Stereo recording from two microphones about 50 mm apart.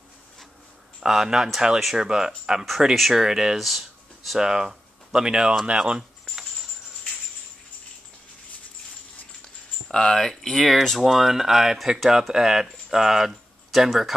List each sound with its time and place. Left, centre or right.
1.0 s speech: centre
4.4 s speech: centre
9.8 s speech: centre